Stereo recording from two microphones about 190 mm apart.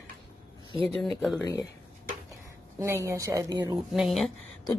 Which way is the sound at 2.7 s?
15° right (ahead or behind).